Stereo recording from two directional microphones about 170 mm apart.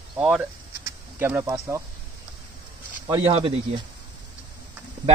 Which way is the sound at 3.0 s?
30° right (ahead or behind).